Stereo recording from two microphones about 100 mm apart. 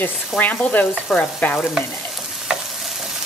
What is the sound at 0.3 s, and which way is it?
Frying, 15° left (ahead or behind).